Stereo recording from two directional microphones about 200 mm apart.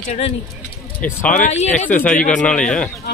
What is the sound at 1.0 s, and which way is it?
Speech, 10° left (ahead or behind).